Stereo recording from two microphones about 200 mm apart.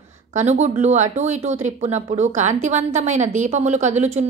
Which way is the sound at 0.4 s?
35° right (ahead or behind).